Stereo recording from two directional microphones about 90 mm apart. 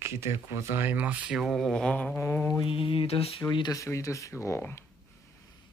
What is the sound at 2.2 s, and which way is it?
Mantra, 30° left (ahead or behind).